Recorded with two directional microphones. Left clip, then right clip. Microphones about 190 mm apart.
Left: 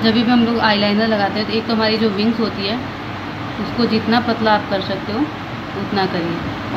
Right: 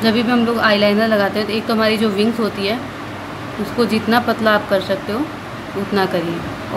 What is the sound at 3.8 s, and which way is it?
A woman's voice, 90° right.